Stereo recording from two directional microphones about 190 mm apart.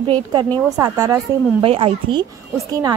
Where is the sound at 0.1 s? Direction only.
25° right (ahead or behind).